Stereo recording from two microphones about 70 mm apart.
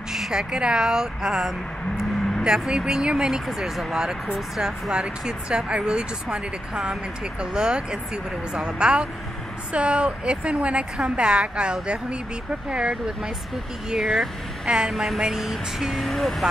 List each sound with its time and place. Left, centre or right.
0.1 s speech: centre
13.8 s speech: centre